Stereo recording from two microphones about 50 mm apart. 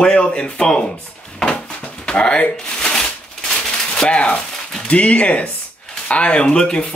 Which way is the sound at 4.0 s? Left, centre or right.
Left.